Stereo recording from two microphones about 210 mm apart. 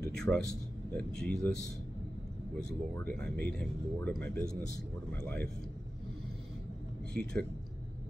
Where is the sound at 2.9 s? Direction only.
10° left (ahead or behind).